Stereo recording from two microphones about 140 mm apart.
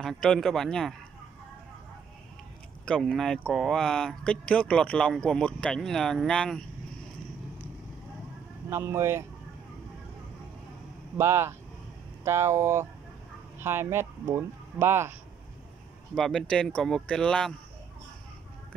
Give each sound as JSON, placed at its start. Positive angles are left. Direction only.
{"t": 0.0, "sound": "speech", "side_deg": 5}
{"t": 2.8, "sound": "speech", "side_deg": 0}
{"t": 8.6, "sound": "speech", "side_deg": -20}
{"t": 11.1, "sound": "speech", "side_deg": -20}
{"t": 16.2, "sound": "speech", "side_deg": 5}